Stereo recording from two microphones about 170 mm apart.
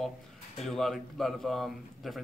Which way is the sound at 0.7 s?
Centre (ahead or behind).